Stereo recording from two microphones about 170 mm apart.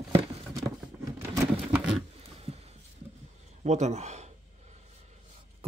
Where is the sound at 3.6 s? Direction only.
40° right (ahead or behind).